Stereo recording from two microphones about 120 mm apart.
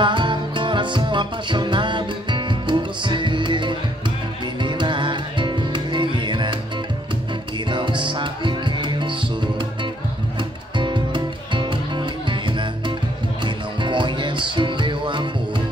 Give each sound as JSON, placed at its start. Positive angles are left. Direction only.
{"t": 0.0, "sound": "music", "side_deg": -40}
{"t": 7.7, "sound": "music", "side_deg": -40}
{"t": 10.8, "sound": "music", "side_deg": -40}